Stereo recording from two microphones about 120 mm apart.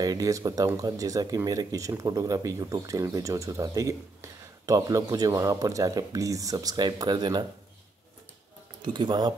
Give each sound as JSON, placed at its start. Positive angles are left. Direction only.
{"t": 0.0, "sound": "speech", "side_deg": -30}
{"t": 8.8, "sound": "speech", "side_deg": -40}